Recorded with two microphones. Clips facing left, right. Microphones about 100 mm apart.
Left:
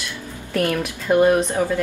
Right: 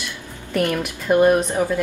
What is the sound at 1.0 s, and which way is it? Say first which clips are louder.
Speech: even; 10° right (ahead or behind).